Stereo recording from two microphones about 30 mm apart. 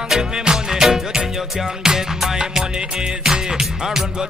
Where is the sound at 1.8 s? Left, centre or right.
Centre.